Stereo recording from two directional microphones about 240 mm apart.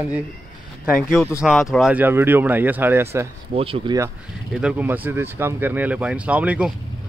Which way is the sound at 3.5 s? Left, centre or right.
Right.